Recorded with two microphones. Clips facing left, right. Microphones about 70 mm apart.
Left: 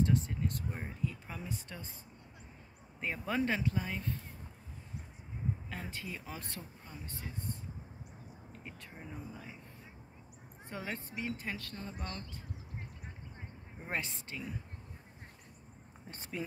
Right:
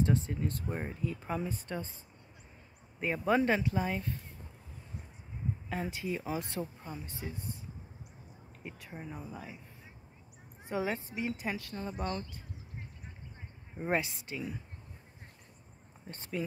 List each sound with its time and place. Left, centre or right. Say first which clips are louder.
0.0 s speech: right 1 dB; right
0.7 s speech: right 4 dB; right
3.0 s speech: right 6 dB; centre
5.7 s speech: right 7 dB; centre
8.6 s speech: right 5 dB; centre
10.7 s speech: right 8 dB; centre
13.8 s speech: right 7 dB; centre